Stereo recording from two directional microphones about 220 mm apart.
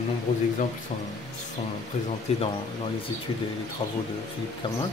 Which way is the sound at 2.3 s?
30° left (ahead or behind).